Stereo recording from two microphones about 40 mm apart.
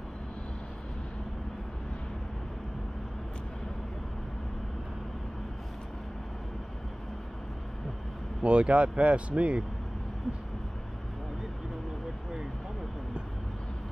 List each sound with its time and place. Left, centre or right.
8.4 s speech: right